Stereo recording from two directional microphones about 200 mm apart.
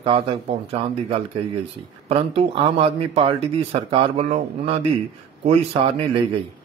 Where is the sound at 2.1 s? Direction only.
30° right (ahead or behind).